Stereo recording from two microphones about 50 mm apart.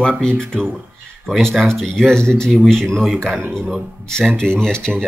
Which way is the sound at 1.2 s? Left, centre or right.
Centre.